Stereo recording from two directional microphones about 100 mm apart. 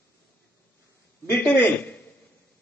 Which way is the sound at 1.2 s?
20° left (ahead or behind).